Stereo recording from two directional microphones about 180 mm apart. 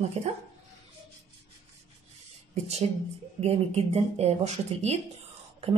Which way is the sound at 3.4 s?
35° right (ahead or behind).